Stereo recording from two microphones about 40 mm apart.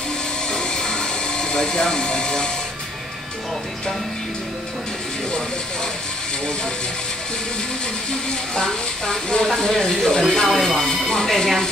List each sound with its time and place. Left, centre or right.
0.5 s mechanisms: centre
8.5 s speech: centre